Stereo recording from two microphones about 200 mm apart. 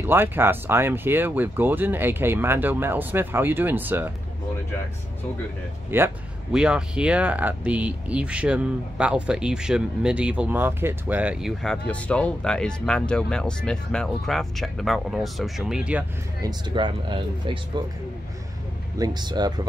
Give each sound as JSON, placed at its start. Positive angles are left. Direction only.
{"t": 0.0, "sound": "speech", "side_deg": -10}
{"t": 5.9, "sound": "speech", "side_deg": -10}
{"t": 16.3, "sound": "speech", "side_deg": -20}
{"t": 18.9, "sound": "speech", "side_deg": -20}